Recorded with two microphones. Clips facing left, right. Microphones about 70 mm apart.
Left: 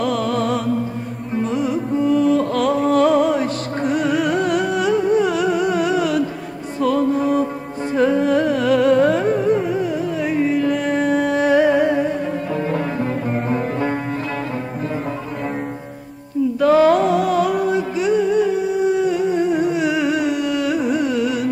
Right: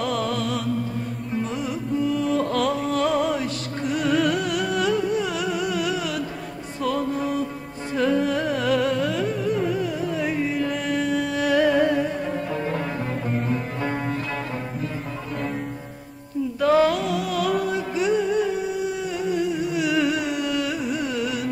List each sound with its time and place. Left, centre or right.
0.0 s music: left
4.0 s music: centre
4.4 s music: left
4.6 s music: left
7.9 s music: left
8.3 s carnatic music: left
9.6 s music: centre
13.3 s music: left
16.6 s music: left
17.5 s music: left
19.2 s a sound: left
19.7 s music: left
20.6 s carnatic music: left